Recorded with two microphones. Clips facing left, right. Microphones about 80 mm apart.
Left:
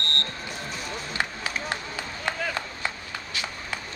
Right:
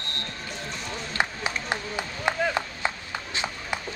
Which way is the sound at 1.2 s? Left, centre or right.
Centre.